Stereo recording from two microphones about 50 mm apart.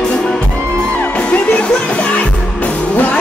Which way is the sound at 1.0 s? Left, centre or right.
Left.